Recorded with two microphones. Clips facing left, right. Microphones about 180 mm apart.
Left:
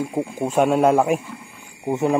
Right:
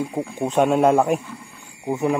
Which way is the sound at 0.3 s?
5° left (ahead or behind).